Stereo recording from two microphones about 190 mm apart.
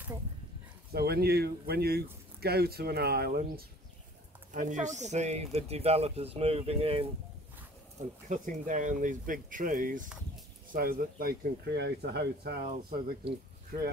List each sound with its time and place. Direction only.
0.9 s speech: 55° right (ahead or behind)
4.5 s speech: 40° right (ahead or behind)
8.3 s speech: 40° right (ahead or behind); by 12.6 s 60° right (ahead or behind)
13.7 s speech: 50° right (ahead or behind)